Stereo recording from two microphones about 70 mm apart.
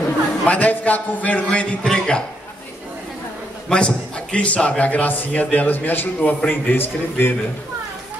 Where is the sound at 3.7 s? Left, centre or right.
Centre; by 7.3 s left.